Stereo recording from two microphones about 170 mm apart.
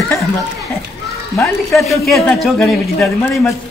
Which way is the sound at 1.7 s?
Centre (ahead or behind).